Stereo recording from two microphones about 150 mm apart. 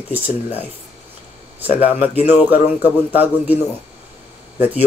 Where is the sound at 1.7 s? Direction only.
45° left (ahead or behind).